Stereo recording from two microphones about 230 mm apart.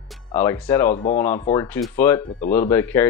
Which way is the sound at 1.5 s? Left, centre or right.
Centre.